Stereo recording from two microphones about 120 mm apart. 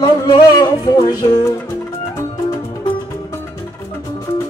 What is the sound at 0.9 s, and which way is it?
Music, 35° left (ahead or behind).